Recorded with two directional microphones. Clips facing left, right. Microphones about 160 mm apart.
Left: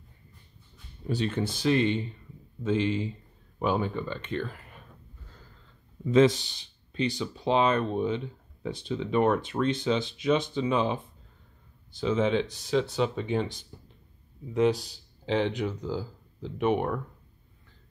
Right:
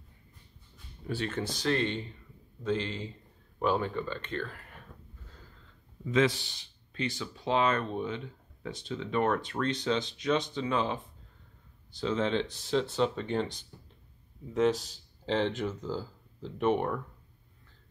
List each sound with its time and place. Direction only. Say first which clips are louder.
1.0 s speech: left 4 dB; 20° left (ahead or behind)
6.0 s speech: left 6 dB; 30° left (ahead or behind)
6.9 s speech: left 6 dB; 20° left (ahead or behind)
12.0 s speech: left 4 dB; 10° left (ahead or behind)